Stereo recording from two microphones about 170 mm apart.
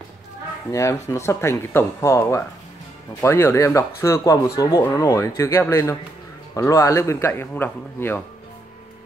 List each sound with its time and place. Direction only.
0.7 s speech: 20° left (ahead or behind)